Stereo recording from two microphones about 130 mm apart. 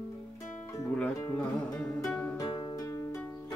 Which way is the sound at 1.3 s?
10° left (ahead or behind).